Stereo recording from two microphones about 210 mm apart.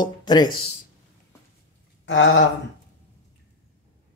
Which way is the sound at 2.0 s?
60° left (ahead or behind).